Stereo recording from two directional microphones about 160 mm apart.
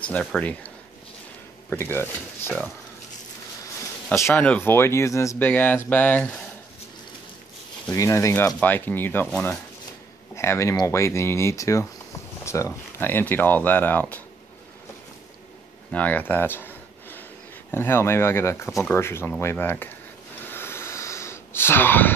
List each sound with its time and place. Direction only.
0.0 s speech: 10° left (ahead or behind)
1.7 s speech: 15° left (ahead or behind)
4.1 s speech: 10° left (ahead or behind)
7.9 s speech: 20° left (ahead or behind)
15.9 s a sound: 10° left (ahead or behind)
17.6 s speech: 15° left (ahead or behind)
20.4 s a sound: 15° left (ahead or behind)